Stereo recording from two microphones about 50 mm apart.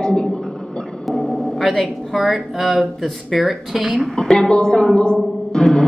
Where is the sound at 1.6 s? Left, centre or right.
Centre.